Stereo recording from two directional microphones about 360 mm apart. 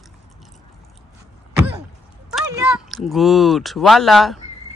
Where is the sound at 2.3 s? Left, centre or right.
Centre.